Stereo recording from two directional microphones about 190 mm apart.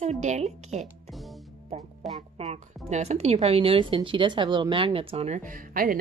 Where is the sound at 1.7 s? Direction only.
35° right (ahead or behind).